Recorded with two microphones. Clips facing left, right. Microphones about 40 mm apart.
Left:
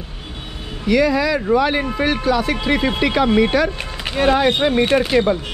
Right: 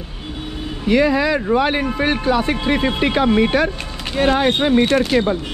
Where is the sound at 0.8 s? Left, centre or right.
Right.